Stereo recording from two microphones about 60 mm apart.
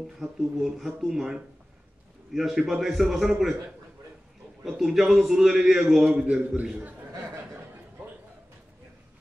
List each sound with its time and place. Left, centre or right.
0.2 s a man's voice: centre
4.6 s a man's voice: centre
6.4 s a man's voice: right